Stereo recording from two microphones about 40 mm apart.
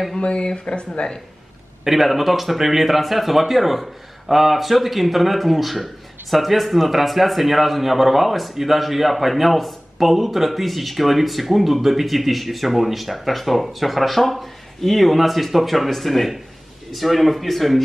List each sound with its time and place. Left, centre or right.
0.2 s speech: left
1.9 s a man's voice: centre